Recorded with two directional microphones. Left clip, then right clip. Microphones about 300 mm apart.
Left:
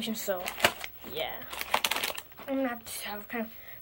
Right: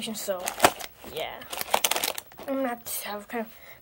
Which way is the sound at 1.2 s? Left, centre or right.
Centre.